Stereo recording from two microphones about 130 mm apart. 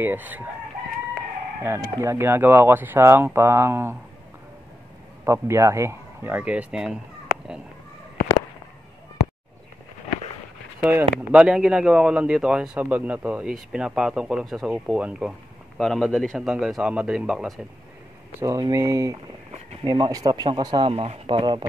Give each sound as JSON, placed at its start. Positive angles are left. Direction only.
{"t": 0.0, "sound": "speech", "side_deg": -15}
{"t": 1.6, "sound": "speech", "side_deg": -20}
{"t": 5.2, "sound": "speech", "side_deg": -20}
{"t": 10.8, "sound": "speech", "side_deg": -15}
{"t": 11.4, "sound": "a man's voice", "side_deg": -5}
{"t": 15.8, "sound": "a man's voice", "side_deg": 5}
{"t": 18.4, "sound": "speech", "side_deg": -25}